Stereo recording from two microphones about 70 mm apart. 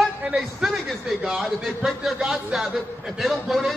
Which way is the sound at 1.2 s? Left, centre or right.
Centre.